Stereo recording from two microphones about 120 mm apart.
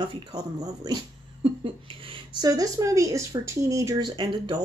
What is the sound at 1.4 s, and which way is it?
Speech, 50° right (ahead or behind).